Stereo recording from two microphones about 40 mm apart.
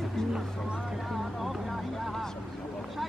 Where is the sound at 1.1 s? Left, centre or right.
Centre.